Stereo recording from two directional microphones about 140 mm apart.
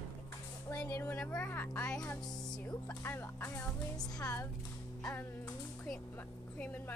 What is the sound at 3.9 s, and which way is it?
Speech, 25° left (ahead or behind).